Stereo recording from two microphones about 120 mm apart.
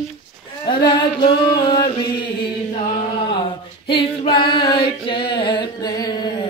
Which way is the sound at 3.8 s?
50° left (ahead or behind).